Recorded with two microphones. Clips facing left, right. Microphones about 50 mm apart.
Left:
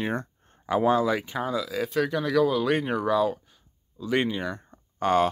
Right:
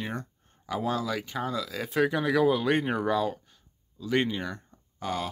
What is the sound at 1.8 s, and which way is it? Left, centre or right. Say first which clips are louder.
Speech: right 4 dB; centre.